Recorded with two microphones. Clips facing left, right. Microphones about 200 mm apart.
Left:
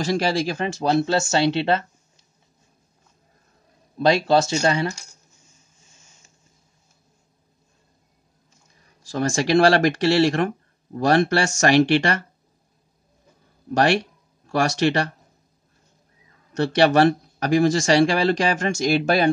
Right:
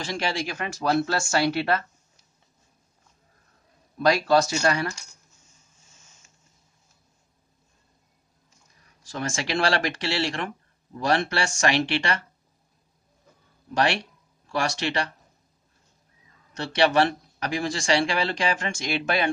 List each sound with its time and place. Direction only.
0.0 s speech: 40° left (ahead or behind)
4.0 s speech: 25° left (ahead or behind)
9.1 s speech: 40° left (ahead or behind)
13.7 s speech: 45° left (ahead or behind)
16.5 s speech: 45° left (ahead or behind)